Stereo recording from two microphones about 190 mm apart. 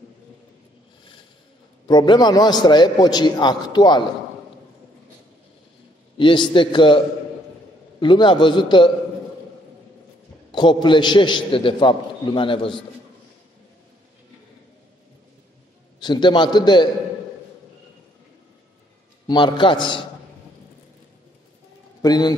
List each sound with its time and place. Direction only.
1.9 s a man's voice: 20° left (ahead or behind)
6.1 s a man's voice: 25° left (ahead or behind)
8.0 s a man's voice: 25° left (ahead or behind)
10.5 s a man's voice: 25° left (ahead or behind)
16.0 s a man's voice: 25° left (ahead or behind)
19.2 s a man's voice: 25° left (ahead or behind)
22.0 s a man's voice: 20° left (ahead or behind)